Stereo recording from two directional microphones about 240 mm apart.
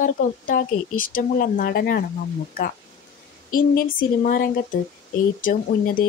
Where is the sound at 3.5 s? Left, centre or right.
Left.